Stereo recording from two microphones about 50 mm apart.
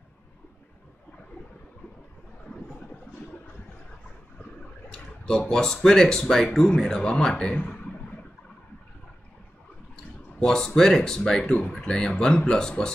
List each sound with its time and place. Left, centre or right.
4.8 s a sound: centre
5.5 s speech: centre
10.4 s speech: centre
11.4 s speech: left
11.7 s speech: centre